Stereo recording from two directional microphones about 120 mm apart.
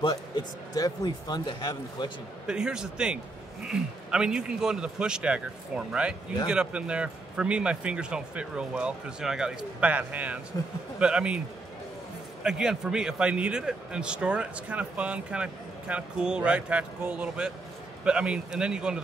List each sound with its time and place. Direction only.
0.0 s speech: 35° left (ahead or behind)
2.4 s a man's voice: 5° right (ahead or behind)
12.4 s a man's voice: 5° right (ahead or behind)